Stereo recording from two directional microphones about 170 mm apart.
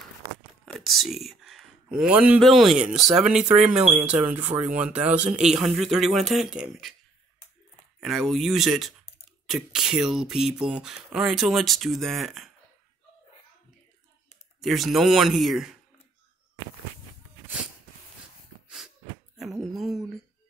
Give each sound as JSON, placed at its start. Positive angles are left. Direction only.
{"t": 0.7, "sound": "speech", "side_deg": 0}
{"t": 8.0, "sound": "speech", "side_deg": 0}
{"t": 14.6, "sound": "speech", "side_deg": 0}
{"t": 19.3, "sound": "a sound", "side_deg": 0}